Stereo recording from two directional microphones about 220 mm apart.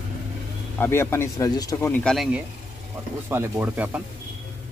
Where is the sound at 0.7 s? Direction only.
10° left (ahead or behind).